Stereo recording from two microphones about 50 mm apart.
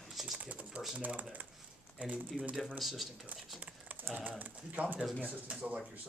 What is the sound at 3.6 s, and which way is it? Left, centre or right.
Typing, right.